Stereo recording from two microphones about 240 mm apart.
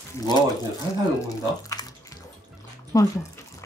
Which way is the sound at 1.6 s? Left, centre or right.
Centre.